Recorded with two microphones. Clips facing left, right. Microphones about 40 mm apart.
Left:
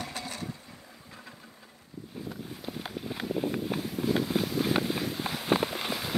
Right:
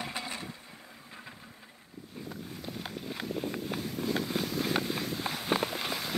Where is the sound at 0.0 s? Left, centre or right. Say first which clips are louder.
Even; right.